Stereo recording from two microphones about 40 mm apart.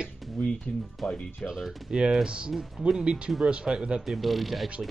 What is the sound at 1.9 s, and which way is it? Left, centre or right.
Speech, right.